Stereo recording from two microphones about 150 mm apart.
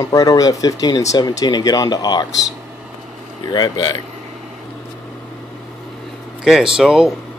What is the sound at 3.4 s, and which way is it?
Speech, 25° left (ahead or behind).